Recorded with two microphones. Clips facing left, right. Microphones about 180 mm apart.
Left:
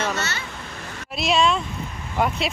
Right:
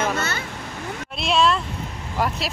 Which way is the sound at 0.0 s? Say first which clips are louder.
Right 2 dB; 50° right (ahead or behind).